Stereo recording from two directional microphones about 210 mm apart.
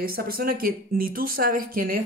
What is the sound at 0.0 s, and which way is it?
Speech, 45° right (ahead or behind).